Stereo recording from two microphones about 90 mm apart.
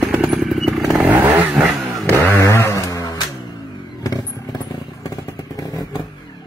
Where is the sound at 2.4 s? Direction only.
35° left (ahead or behind).